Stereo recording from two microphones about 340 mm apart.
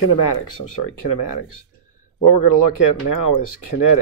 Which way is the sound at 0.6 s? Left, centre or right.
Left.